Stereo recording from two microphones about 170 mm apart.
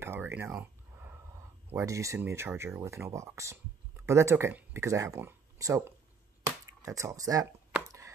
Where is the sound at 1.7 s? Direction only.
15° right (ahead or behind).